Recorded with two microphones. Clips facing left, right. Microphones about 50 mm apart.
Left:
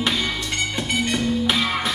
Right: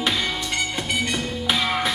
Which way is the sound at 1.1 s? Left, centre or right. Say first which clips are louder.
Left 3 dB; centre.